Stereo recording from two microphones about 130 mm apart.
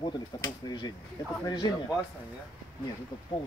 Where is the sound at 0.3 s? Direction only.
35° left (ahead or behind).